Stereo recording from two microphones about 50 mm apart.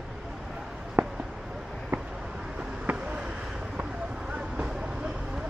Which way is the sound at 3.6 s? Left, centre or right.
Right.